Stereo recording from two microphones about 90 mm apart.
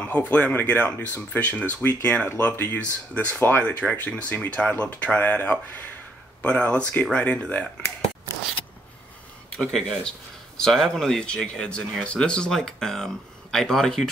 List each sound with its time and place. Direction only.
0.3 s speech: 15° left (ahead or behind)
9.6 s speech: 5° left (ahead or behind)